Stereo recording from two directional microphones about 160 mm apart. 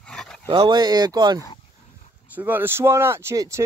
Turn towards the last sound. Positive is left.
turn(degrees=-15)  # may be behind; listen again after turning